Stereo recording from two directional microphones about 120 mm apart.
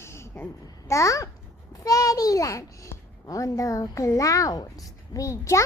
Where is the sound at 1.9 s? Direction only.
30° left (ahead or behind).